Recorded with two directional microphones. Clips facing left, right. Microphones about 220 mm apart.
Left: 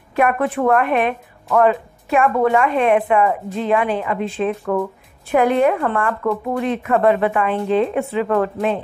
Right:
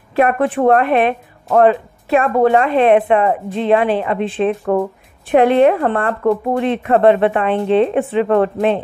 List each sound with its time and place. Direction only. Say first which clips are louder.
0.1 s speech: right 3 dB; 30° right (ahead or behind)